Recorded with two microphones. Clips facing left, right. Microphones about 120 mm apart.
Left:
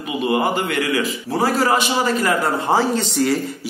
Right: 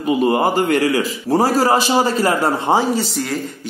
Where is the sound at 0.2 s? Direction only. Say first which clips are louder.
Even; 40° right (ahead or behind).